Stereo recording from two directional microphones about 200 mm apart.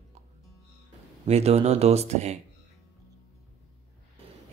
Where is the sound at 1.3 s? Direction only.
30° right (ahead or behind).